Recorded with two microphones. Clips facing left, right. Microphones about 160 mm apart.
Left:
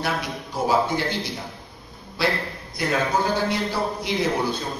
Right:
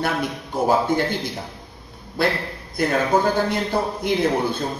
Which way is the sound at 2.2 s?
50° right (ahead or behind).